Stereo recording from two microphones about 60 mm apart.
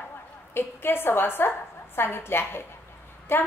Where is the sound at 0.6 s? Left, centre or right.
Left.